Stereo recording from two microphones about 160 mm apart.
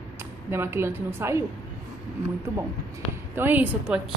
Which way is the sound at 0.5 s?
15° right (ahead or behind).